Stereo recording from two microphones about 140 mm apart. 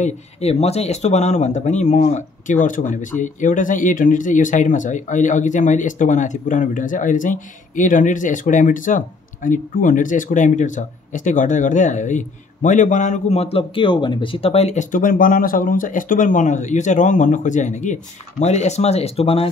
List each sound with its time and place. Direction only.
0.0 s speech: 50° left (ahead or behind)